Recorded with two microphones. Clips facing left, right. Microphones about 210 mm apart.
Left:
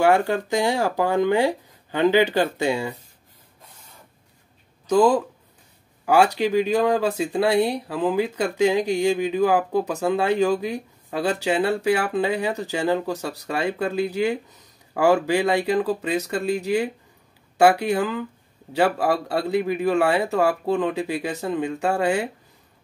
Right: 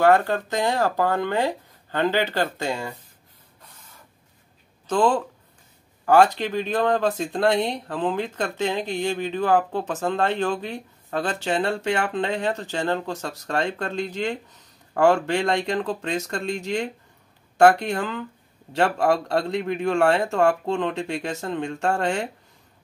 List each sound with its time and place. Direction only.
0.0 s speech: 15° left (ahead or behind)
4.8 s speech: 10° left (ahead or behind)